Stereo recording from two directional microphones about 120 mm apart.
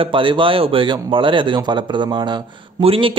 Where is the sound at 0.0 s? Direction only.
45° right (ahead or behind).